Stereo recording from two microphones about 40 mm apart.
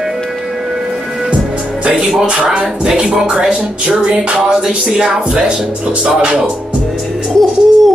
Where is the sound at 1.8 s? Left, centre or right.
Right.